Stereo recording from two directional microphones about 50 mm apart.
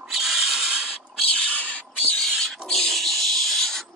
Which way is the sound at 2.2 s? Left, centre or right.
Centre.